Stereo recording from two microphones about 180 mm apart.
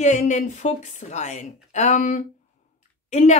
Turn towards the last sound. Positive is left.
turn(degrees=40)  # may be behind; listen again after turning